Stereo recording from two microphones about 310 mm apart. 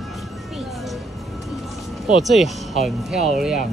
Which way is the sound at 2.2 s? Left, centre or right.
Centre.